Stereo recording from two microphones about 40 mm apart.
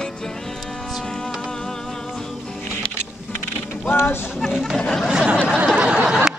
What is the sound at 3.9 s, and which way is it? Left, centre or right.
Speech, left.